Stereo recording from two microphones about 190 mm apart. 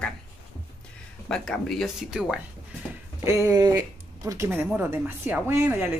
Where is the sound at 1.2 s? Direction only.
5° left (ahead or behind).